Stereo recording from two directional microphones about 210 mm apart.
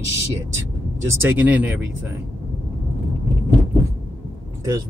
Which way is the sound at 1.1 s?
10° right (ahead or behind).